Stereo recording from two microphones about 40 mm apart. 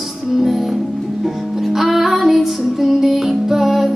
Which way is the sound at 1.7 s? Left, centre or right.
Centre.